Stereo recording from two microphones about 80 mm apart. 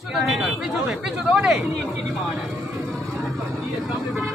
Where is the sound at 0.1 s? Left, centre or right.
Centre.